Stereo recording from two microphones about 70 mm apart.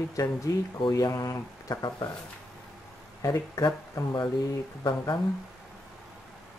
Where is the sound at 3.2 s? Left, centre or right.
Left.